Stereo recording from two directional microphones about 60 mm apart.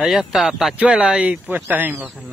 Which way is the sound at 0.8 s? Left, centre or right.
Centre.